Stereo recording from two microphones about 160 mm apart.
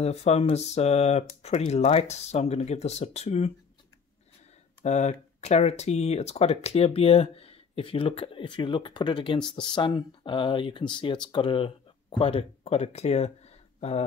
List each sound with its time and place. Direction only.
0.0 s speech: 40° left (ahead or behind)
4.8 s speech: 45° left (ahead or behind)